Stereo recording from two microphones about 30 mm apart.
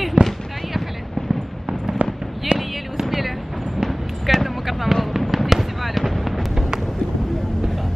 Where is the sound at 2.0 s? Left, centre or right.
Right.